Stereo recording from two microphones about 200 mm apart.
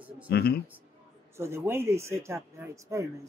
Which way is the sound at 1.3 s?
15° right (ahead or behind).